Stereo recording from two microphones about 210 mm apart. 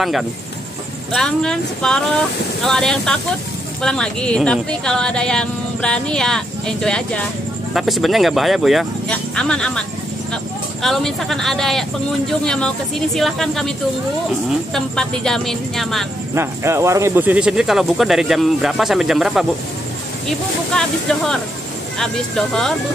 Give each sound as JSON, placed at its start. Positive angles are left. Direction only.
{"t": 0.0, "sound": "speech", "side_deg": 0}
{"t": 16.3, "sound": "speech", "side_deg": -15}